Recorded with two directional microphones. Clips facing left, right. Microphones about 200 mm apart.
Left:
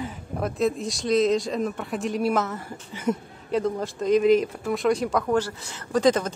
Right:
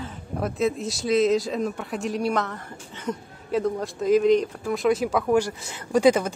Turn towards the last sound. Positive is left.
turn(degrees=-10)  # may be behind; listen again after turning